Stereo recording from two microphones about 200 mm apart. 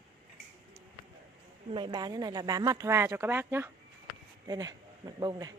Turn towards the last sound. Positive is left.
turn(degrees=-20)  # may be behind; listen again after turning